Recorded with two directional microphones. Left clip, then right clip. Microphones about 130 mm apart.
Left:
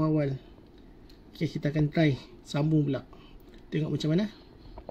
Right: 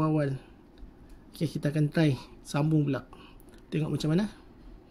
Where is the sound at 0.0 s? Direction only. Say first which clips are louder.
Even; 20° right (ahead or behind).